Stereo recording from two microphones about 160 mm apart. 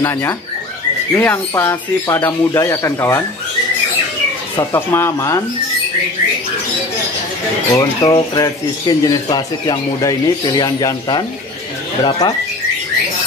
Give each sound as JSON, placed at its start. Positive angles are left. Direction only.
{"t": 0.0, "sound": "speech", "side_deg": 15}
{"t": 4.6, "sound": "speech", "side_deg": 15}
{"t": 7.7, "sound": "a man's voice", "side_deg": 20}